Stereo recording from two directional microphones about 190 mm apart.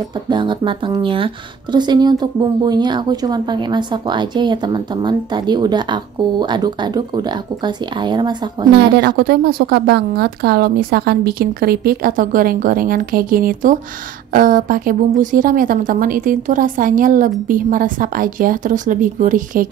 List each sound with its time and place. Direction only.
0.3 s speech: 25° right (ahead or behind)
8.7 s a woman's voice: 60° right (ahead or behind)